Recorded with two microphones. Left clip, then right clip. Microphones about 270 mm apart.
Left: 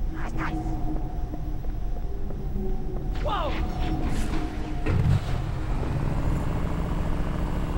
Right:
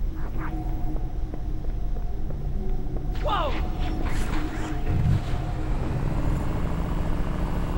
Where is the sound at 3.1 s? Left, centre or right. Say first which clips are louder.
Right 2 dB; centre.